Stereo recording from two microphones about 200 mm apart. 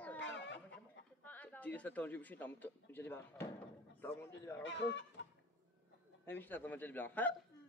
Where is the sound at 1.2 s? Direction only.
10° left (ahead or behind).